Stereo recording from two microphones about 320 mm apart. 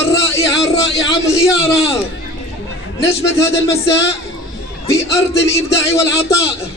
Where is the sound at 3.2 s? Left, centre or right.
Centre.